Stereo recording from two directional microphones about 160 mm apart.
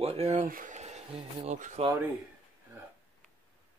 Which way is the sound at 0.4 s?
60° right (ahead or behind).